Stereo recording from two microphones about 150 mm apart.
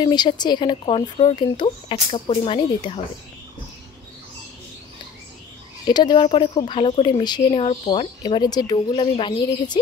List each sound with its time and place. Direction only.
0.0 s speech: 30° left (ahead or behind)
5.9 s speech: 30° left (ahead or behind)